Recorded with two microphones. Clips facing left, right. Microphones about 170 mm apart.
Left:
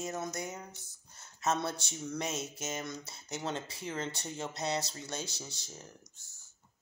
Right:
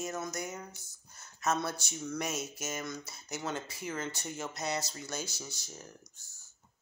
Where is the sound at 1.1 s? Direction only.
25° left (ahead or behind).